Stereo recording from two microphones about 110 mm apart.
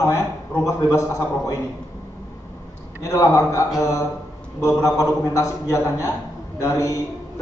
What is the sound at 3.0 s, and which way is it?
A man's voice, 30° left (ahead or behind).